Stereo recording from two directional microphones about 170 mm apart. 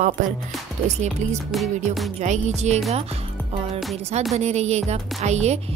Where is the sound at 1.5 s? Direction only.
Centre (ahead or behind).